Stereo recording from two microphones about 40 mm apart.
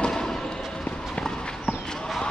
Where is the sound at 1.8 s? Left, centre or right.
Centre.